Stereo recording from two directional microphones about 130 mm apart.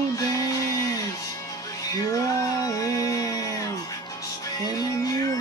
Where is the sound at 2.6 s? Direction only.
25° left (ahead or behind).